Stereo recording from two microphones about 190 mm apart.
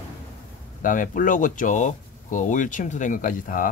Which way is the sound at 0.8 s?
45° left (ahead or behind).